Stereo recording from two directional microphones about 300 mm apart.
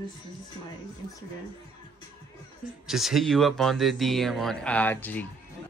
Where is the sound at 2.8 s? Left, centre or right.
Centre.